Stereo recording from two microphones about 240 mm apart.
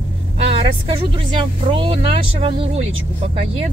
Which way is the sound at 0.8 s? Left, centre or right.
Right.